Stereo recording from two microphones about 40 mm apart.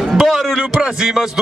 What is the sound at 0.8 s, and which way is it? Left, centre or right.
Speech, centre.